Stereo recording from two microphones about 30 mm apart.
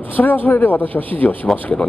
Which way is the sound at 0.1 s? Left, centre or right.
Left.